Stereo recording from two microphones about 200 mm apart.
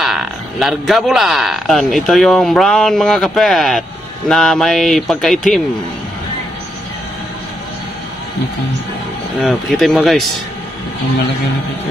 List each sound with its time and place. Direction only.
0.0 s speech: centre (ahead or behind)
9.4 s speech: centre (ahead or behind)